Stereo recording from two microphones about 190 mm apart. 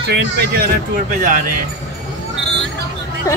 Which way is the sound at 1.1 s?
45° right (ahead or behind).